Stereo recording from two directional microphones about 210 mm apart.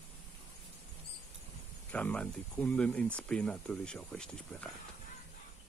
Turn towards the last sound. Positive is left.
turn(degrees=5)  # may be behind; listen again after turning